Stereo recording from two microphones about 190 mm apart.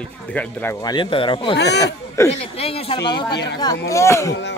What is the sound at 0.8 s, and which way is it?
Speech, 25° left (ahead or behind).